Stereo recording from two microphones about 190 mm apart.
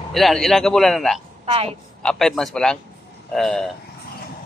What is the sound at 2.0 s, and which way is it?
Speech, 5° left (ahead or behind).